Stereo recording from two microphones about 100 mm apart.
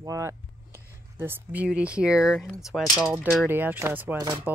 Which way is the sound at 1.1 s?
20° right (ahead or behind).